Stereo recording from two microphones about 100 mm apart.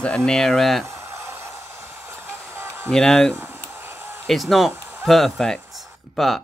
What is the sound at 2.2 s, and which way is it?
Music, 25° right (ahead or behind).